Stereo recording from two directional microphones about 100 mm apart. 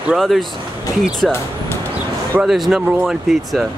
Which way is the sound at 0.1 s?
Centre (ahead or behind).